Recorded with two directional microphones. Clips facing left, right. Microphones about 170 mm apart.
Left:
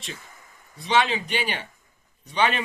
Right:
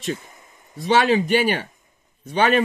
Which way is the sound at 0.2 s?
20° right (ahead or behind).